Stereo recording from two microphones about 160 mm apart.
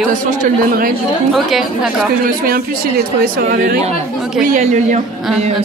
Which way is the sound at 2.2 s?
65° right (ahead or behind).